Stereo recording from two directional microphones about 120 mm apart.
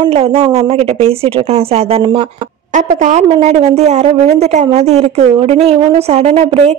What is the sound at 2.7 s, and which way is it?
A woman's voice, 90° right.